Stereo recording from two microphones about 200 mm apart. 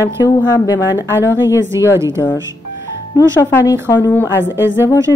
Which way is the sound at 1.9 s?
15° right (ahead or behind).